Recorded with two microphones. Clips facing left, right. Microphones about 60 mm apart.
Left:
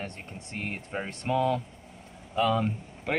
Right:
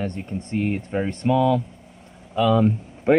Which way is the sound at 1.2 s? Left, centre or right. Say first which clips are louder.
Right 7 dB; centre.